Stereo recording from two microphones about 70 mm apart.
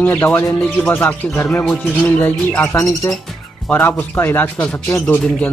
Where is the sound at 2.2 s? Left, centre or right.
Left.